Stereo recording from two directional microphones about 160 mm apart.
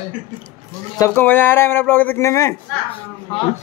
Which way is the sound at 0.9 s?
15° left (ahead or behind).